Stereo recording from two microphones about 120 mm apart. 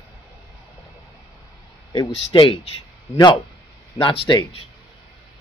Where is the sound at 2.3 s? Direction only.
40° left (ahead or behind).